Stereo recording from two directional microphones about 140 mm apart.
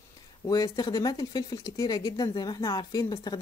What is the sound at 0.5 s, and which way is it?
Speech, 30° left (ahead or behind).